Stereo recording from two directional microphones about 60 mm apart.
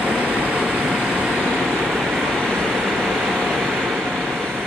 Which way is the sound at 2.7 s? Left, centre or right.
Centre.